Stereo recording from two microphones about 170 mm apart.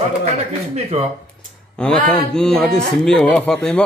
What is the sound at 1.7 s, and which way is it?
A man's voice, 5° left (ahead or behind).